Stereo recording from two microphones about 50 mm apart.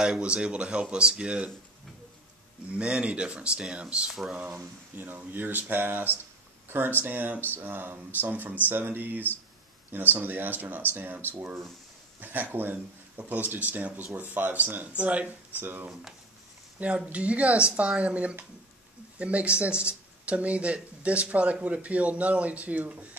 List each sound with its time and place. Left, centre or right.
0.2 s speech: right
2.7 s speech: right
4.1 s speech: centre
4.4 s speech: right
15.6 s speech: right
16.8 s speech: right